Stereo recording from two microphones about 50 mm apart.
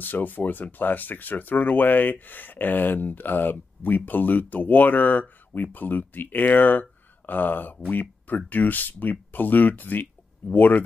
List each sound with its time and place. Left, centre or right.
0.0 s speech: left